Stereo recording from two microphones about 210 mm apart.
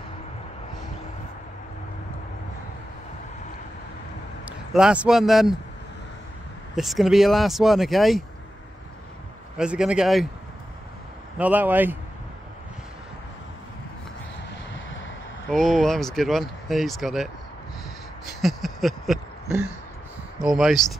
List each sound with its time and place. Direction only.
4.5 s a man's voice: 5° right (ahead or behind)
6.7 s speech: centre (ahead or behind)
9.6 s speech: 5° right (ahead or behind)
11.3 s speech: 5° right (ahead or behind)
14.7 s vehicle: 65° left (ahead or behind)
15.5 s speech: centre (ahead or behind)
18.4 s a sound: centre (ahead or behind)
20.3 s speech: centre (ahead or behind)